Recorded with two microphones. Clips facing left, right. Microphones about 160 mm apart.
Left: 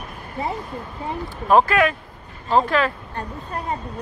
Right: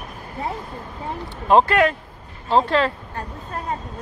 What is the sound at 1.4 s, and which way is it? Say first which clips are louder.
Speech: right 1 dB; 30° right (ahead or behind).